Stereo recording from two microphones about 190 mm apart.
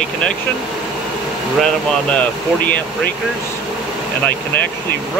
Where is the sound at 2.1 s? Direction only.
5° left (ahead or behind).